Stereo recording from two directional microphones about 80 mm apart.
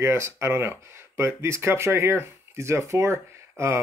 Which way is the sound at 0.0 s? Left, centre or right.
Right.